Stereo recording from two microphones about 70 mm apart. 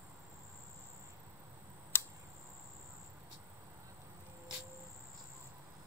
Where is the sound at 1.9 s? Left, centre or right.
Left.